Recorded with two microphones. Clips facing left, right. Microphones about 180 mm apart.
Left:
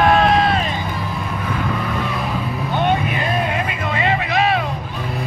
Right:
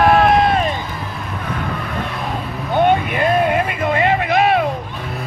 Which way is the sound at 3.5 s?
50° right (ahead or behind).